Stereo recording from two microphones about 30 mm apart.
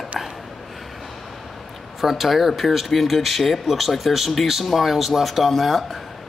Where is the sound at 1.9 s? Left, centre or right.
Centre.